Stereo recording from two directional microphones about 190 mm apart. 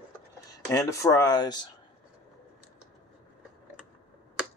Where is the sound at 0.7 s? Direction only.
15° left (ahead or behind).